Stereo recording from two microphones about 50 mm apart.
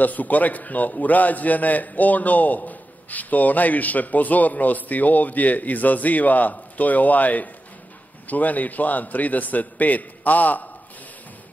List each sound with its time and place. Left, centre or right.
0.0 s a man's voice: left